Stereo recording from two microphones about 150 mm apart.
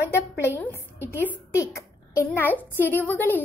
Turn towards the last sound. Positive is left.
turn(degrees=10)  # may be behind; listen again after turning